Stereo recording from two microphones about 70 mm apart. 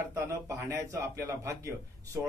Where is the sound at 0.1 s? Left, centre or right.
Right.